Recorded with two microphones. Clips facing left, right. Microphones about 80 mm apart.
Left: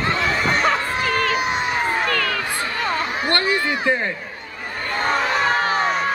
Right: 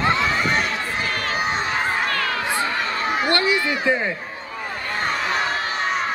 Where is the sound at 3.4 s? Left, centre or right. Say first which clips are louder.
Even; left.